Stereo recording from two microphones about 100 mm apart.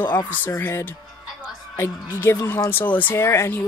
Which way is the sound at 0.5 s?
25° left (ahead or behind).